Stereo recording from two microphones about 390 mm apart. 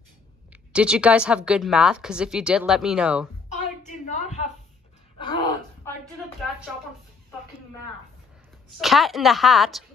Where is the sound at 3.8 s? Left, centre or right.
Centre.